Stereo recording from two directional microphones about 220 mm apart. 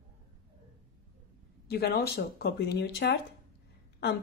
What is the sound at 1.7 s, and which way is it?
Speech, 45° left (ahead or behind).